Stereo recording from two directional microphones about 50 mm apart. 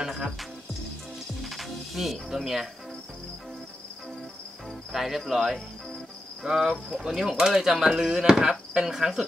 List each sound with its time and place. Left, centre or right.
0.0 s music: centre
1.4 s music: centre
4.9 s cricket: centre
6.4 s speech: centre